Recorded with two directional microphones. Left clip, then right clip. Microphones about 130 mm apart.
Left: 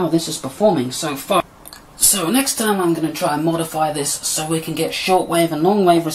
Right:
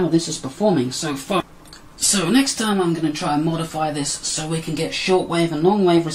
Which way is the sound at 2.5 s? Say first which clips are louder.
Left 3 dB; 30° left (ahead or behind).